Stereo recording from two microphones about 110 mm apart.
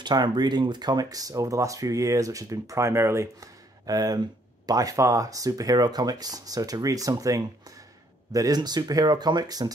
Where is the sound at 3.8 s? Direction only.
35° right (ahead or behind).